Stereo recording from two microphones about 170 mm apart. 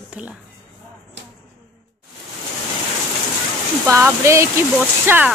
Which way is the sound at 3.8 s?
15° right (ahead or behind).